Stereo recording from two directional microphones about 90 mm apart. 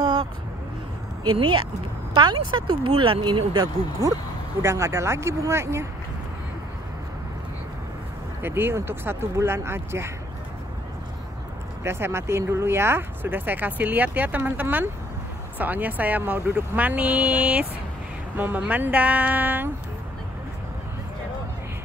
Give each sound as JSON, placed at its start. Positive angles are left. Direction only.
{"t": 0.0, "sound": "vehicle", "side_deg": -50}
{"t": 2.1, "sound": "speech", "side_deg": -60}
{"t": 4.6, "sound": "speech", "side_deg": -30}
{"t": 8.4, "sound": "speech", "side_deg": -25}
{"t": 11.8, "sound": "speech", "side_deg": -30}